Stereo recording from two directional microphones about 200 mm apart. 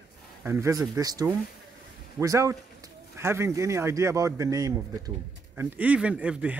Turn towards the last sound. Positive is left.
turn(degrees=-5)  # may be behind; listen again after turning